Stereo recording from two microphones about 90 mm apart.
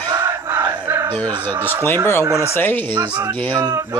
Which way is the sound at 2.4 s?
25° left (ahead or behind).